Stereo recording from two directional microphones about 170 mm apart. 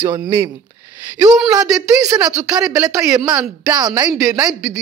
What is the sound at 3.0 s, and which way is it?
A woman's voice, 20° right (ahead or behind).